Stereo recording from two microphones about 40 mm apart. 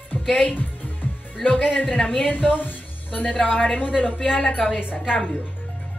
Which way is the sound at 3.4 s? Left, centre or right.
Left.